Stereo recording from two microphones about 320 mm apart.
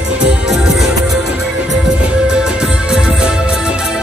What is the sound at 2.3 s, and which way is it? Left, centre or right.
Music, centre.